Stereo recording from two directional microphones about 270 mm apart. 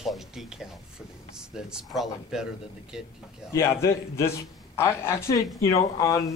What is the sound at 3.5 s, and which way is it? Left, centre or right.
A woman's voice, centre.